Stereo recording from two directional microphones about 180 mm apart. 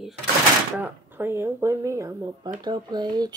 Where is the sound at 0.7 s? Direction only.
10° right (ahead or behind).